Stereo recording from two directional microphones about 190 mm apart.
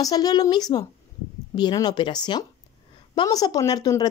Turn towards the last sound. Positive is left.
turn(degrees=20)  # may be behind; listen again after turning